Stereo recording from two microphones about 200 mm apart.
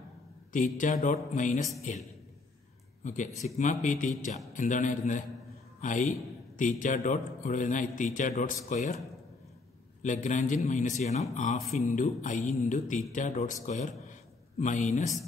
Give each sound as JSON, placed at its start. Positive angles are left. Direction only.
{"t": 0.5, "sound": "speech", "side_deg": 40}
{"t": 3.0, "sound": "a man's voice", "side_deg": 40}
{"t": 10.0, "sound": "speech", "side_deg": 40}